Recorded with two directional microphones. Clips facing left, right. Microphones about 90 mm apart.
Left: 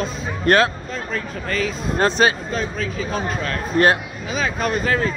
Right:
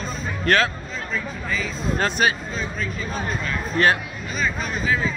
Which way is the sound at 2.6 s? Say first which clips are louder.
Left 4 dB; 90° left.